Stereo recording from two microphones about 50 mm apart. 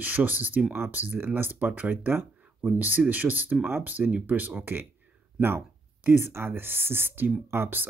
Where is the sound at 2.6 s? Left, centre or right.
Right.